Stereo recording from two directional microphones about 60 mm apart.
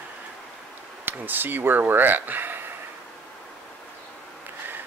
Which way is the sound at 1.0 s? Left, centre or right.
Right.